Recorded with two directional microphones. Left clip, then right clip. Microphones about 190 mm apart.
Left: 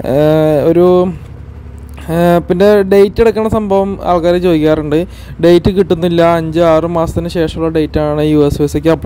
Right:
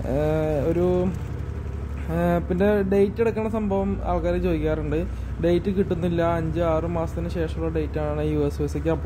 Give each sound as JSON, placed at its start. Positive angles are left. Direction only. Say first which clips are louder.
{"t": 0.0, "sound": "mantra", "louder": "left 14 dB", "side_deg": 55}
{"t": 2.0, "sound": "speech", "louder": "left 14 dB", "side_deg": 55}